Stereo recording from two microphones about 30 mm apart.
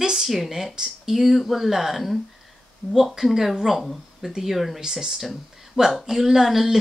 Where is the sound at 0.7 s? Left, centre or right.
Right.